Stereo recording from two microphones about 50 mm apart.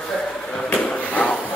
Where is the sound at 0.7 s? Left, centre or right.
Left.